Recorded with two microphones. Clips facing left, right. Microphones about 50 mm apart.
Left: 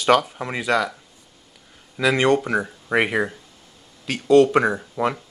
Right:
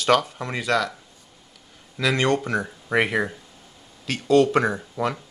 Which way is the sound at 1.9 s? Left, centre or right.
Centre.